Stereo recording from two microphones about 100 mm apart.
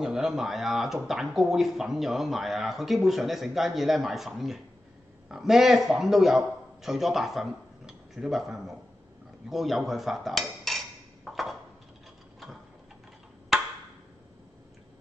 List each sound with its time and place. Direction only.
0.0 s a man's voice: 5° right (ahead or behind)
10.7 s a sound: centre (ahead or behind)
11.2 s ping: centre (ahead or behind)